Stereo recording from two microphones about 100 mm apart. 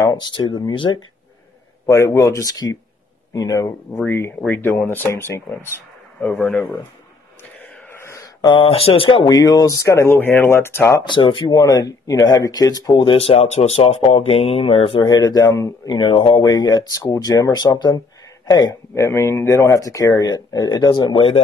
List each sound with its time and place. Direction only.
0.0 s speech: 35° left (ahead or behind)
0.3 s speech: 55° left (ahead or behind)
1.9 s speech: 30° left (ahead or behind)
4.0 s speech: 20° left (ahead or behind)
8.4 s speech: 55° left (ahead or behind)
9.2 s speech: 35° left (ahead or behind)
11.0 s speech: 55° left (ahead or behind)
11.5 s speech: 40° left (ahead or behind)
12.9 s speech: 60° left (ahead or behind)
15.0 s speech: 40° left (ahead or behind)
16.0 s speech: 60° left (ahead or behind)
16.4 s speech: 40° left (ahead or behind); by 21.4 s 60° left (ahead or behind)